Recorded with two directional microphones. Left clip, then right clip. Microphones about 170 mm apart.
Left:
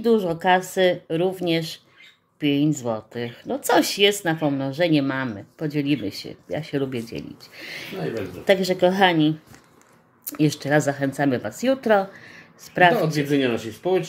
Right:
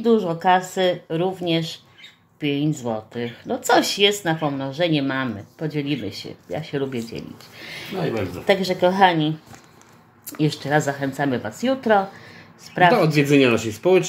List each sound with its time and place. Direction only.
0.0 s speech: 40° left (ahead or behind)
10.3 s speech: 30° left (ahead or behind)
13.0 s speech: 40° right (ahead or behind)